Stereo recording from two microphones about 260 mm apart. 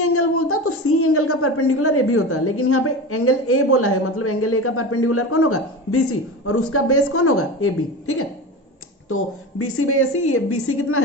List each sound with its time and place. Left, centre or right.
0.0 s a woman's voice: left